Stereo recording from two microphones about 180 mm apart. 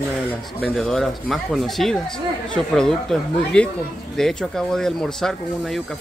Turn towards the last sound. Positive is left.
turn(degrees=0)  # may be behind; listen again after turning